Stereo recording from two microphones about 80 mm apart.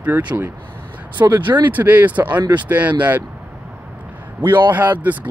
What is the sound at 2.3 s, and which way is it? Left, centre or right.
Speech, right.